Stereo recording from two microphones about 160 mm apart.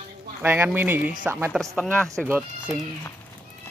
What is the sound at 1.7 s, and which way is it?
Speech, 5° left (ahead or behind).